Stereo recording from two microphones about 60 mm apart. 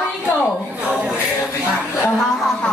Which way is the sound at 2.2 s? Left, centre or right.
Centre.